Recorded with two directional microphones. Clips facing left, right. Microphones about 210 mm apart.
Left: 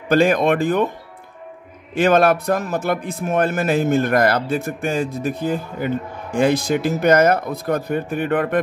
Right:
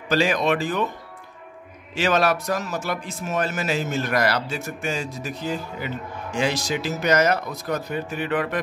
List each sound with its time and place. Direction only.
0.1 s a man's voice: 55° left (ahead or behind)
2.0 s a man's voice: 55° left (ahead or behind)